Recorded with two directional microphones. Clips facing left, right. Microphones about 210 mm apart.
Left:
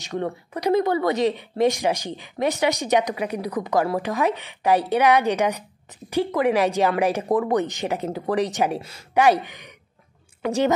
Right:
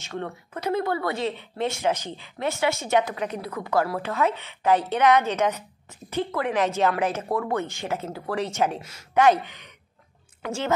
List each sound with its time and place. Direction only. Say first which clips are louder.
0.0 s speech: left 5 dB; 15° left (ahead or behind)